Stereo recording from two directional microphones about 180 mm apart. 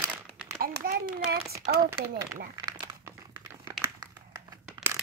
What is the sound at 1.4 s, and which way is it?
Speech, 15° right (ahead or behind).